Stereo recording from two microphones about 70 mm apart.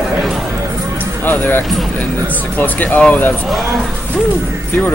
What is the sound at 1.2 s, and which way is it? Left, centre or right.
Speech, left.